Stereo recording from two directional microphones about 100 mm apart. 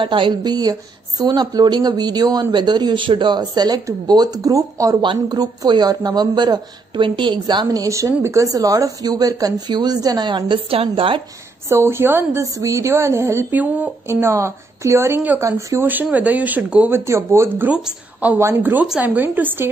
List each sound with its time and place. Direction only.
0.0 s a woman's voice: 55° right (ahead or behind); by 4.9 s 35° right (ahead or behind)
5.0 s a woman's voice: 55° right (ahead or behind)
5.4 s a woman's voice: 40° right (ahead or behind); by 11.2 s 65° right (ahead or behind)
11.7 s a woman's voice: 25° right (ahead or behind)
14.0 s a woman's voice: 25° right (ahead or behind)
15.4 s speech: 30° right (ahead or behind)
15.8 s speech: 20° right (ahead or behind)
17.0 s a woman's voice: 25° right (ahead or behind)
17.6 s a woman's voice: 15° right (ahead or behind)